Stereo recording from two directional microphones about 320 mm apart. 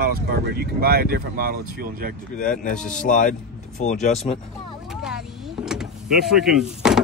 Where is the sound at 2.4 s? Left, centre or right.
Left.